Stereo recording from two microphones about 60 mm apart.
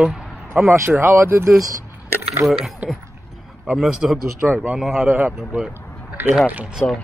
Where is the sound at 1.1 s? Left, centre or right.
Right.